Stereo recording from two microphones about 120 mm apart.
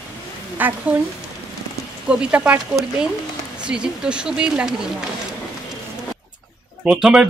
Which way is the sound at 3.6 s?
10° right (ahead or behind).